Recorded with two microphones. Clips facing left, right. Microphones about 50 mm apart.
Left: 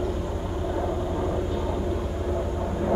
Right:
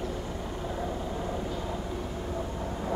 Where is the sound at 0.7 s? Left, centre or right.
Centre.